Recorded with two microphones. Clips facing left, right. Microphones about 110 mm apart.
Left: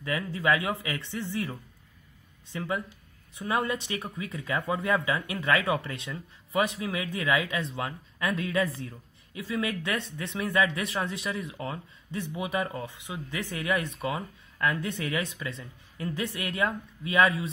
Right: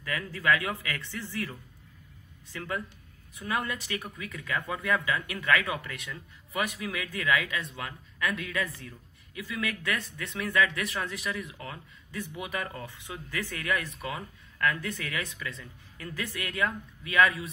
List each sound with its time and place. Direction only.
0.0 s speech: 20° left (ahead or behind)